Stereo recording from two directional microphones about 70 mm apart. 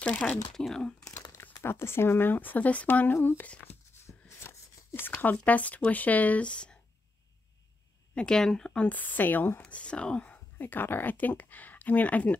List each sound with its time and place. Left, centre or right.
0.0 s speech: centre
1.6 s speech: left
3.4 s speech: left
4.0 s a sound: left; by 6.8 s centre
8.1 s speech: centre; by 9.6 s left
9.6 s speech: centre